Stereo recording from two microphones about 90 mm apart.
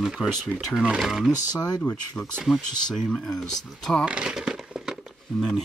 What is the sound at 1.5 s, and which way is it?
Speech, 50° left (ahead or behind).